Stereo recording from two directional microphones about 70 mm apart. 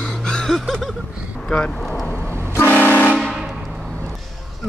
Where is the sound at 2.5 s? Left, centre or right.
Left.